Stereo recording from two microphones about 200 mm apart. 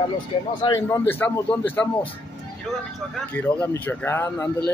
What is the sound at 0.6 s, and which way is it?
Speech, 15° left (ahead or behind).